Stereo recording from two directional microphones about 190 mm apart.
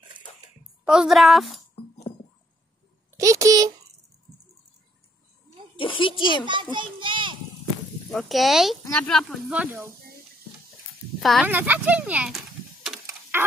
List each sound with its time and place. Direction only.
0.8 s speech: 5° right (ahead or behind)
3.1 s a sound: 15° right (ahead or behind)
5.8 s a child's voice: 25° left (ahead or behind)
6.7 s a sound: 25° right (ahead or behind)
8.1 s speech: centre (ahead or behind)
11.4 s speech: 10° right (ahead or behind)
13.3 s chicken: 10° right (ahead or behind)